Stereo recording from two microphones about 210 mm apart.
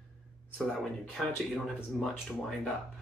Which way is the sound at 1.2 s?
Centre (ahead or behind).